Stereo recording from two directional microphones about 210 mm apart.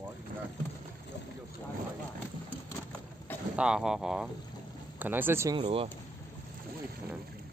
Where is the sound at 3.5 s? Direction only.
5° right (ahead or behind).